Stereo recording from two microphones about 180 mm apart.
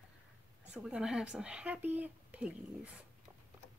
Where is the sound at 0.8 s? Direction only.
5° right (ahead or behind).